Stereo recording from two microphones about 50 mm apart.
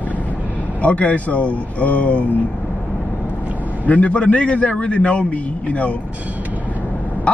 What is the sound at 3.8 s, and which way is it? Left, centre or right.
A man's voice, left.